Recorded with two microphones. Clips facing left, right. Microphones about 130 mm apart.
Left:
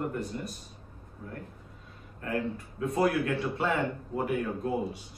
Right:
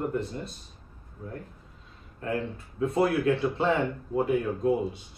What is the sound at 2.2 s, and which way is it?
Speech, 25° right (ahead or behind).